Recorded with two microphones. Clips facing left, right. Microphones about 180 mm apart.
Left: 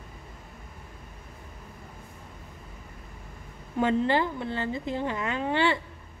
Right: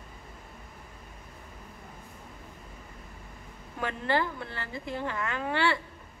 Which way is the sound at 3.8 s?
20° left (ahead or behind).